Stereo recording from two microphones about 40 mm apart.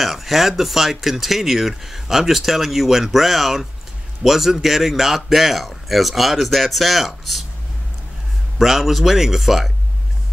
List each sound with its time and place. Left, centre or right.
0.0 s speech: centre
8.5 s speech: centre